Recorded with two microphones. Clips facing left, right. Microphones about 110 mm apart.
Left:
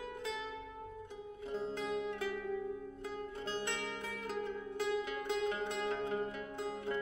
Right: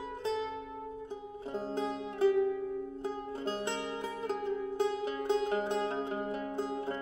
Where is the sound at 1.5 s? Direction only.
30° right (ahead or behind).